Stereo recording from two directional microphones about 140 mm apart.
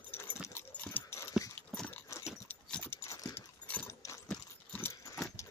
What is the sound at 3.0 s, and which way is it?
Clip-clop, 20° left (ahead or behind).